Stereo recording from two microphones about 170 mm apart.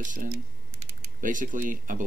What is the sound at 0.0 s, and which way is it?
Speech, 50° right (ahead or behind).